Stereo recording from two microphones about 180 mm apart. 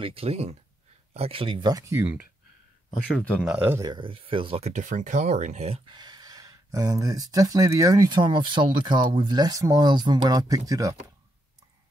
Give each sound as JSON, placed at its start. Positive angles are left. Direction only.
{"t": 0.0, "sound": "speech", "side_deg": -30}
{"t": 3.4, "sound": "speech", "side_deg": -10}
{"t": 3.9, "sound": "speech", "side_deg": -30}